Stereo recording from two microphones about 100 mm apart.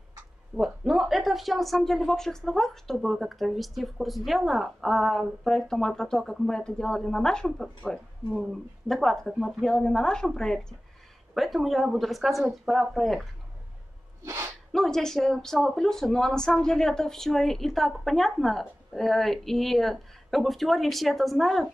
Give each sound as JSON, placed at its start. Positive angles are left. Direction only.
{"t": 0.6, "sound": "a woman's voice", "side_deg": -5}
{"t": 14.2, "sound": "sneeze", "side_deg": -30}
{"t": 14.7, "sound": "a woman's voice", "side_deg": 5}